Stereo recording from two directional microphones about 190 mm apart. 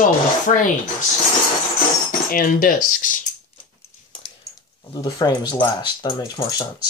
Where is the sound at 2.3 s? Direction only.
45° left (ahead or behind).